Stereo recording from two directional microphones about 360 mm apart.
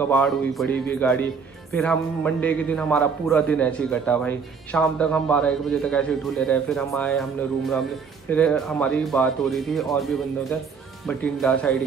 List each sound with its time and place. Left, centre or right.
0.1 s a man's voice: centre
11.1 s a man's voice: centre